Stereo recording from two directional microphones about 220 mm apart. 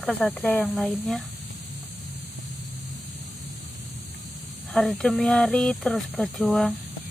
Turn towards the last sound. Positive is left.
turn(degrees=5)  # may be behind; listen again after turning